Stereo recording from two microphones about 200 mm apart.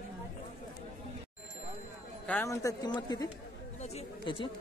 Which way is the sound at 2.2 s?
10° left (ahead or behind).